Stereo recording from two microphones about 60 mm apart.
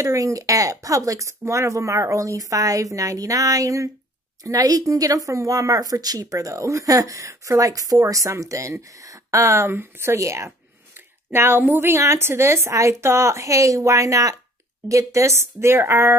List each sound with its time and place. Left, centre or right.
0.0 s speech: right
4.4 s speech: right
9.7 s a woman's voice: right
10.1 s a woman's voice: right
11.3 s a woman's voice: right